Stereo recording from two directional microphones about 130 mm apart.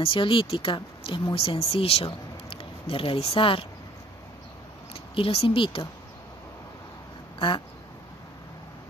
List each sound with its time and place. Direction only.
0.0 s speech: 40° left (ahead or behind)
4.9 s speech: 45° left (ahead or behind)
7.3 s quack: 40° left (ahead or behind)